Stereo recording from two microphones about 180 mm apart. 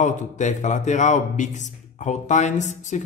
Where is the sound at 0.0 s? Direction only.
40° left (ahead or behind).